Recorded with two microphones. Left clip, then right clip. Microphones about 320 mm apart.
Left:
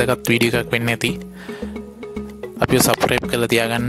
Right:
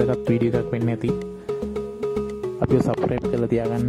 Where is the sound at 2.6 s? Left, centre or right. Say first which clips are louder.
Left 5 dB; left.